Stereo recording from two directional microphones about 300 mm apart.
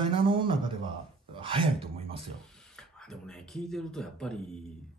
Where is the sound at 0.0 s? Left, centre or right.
Centre.